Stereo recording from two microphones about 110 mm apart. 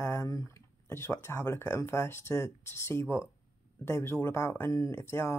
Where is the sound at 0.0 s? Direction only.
25° left (ahead or behind).